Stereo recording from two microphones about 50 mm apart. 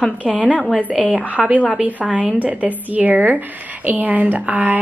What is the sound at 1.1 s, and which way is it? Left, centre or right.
A woman's voice, right.